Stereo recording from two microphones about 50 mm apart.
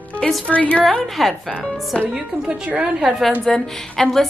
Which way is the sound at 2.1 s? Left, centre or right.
Centre.